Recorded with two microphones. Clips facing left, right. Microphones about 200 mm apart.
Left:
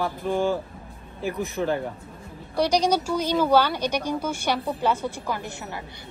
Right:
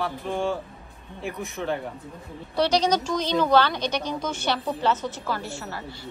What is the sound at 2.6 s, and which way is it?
A woman's voice, 10° left (ahead or behind).